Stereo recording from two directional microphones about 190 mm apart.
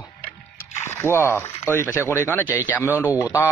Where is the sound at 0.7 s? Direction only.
15° left (ahead or behind).